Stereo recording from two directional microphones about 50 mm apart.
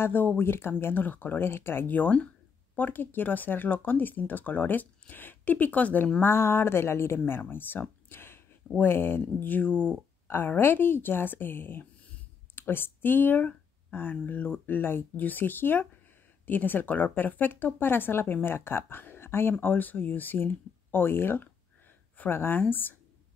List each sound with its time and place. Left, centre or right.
0.0 s speech: left
1.0 s speech: left
6.2 s speech: left
8.1 s a sound: left
8.7 s speech: left
10.2 s a woman's voice: left
15.1 s speech: left
19.6 s speech: left